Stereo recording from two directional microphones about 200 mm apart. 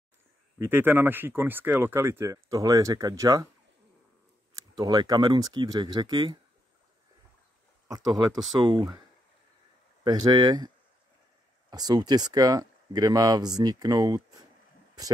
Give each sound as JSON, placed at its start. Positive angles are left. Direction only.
{"t": 0.6, "sound": "speech", "side_deg": -10}
{"t": 4.6, "sound": "speech", "side_deg": -20}
{"t": 7.9, "sound": "speech", "side_deg": -20}
{"t": 8.3, "sound": "speech", "side_deg": 0}
{"t": 10.0, "sound": "speech", "side_deg": -20}
{"t": 11.7, "sound": "speech", "side_deg": -20}